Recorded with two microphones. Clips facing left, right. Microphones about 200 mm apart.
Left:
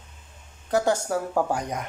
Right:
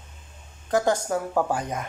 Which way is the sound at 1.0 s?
5° left (ahead or behind).